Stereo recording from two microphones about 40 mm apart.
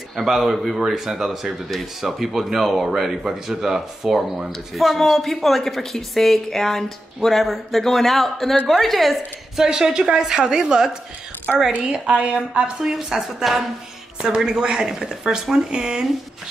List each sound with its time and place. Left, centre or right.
0.3 s a woman's voice: centre
9.6 s speech: centre
13.1 s speech: centre
14.4 s speech: right